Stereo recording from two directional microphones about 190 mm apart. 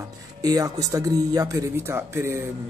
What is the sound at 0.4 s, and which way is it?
Speech, 20° right (ahead or behind).